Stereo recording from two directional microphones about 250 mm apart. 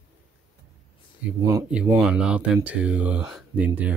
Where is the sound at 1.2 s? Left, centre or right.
Centre.